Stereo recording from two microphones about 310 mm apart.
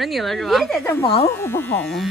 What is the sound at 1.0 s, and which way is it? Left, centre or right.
Speech, centre.